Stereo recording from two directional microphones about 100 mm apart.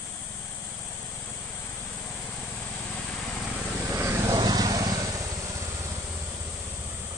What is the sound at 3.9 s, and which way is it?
Vehicle, 25° right (ahead or behind).